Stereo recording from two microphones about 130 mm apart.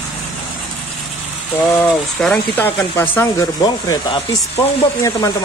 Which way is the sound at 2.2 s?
10° left (ahead or behind).